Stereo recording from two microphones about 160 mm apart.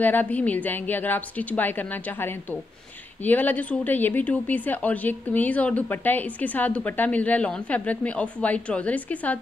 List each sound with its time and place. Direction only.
0.0 s a woman's voice: 10° left (ahead or behind)